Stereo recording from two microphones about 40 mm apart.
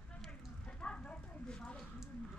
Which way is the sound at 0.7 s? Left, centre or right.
Left.